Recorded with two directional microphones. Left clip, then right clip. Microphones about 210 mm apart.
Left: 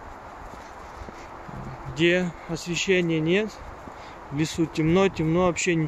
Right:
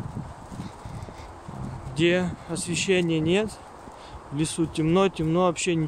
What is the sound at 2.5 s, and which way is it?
Speech, 15° right (ahead or behind).